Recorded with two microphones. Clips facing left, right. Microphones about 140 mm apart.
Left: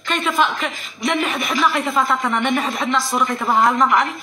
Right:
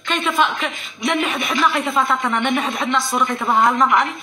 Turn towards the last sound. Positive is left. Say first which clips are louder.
# even
turn(degrees=0)  # may be behind; listen again after turning